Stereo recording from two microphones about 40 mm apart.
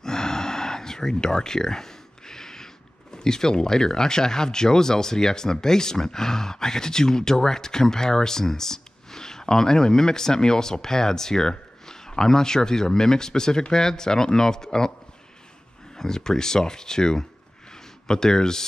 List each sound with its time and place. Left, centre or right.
0.0 s speech: centre
16.0 s speech: centre